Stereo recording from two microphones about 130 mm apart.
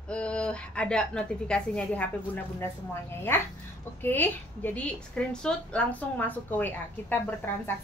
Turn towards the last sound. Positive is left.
turn(degrees=15)  # may be behind; listen again after turning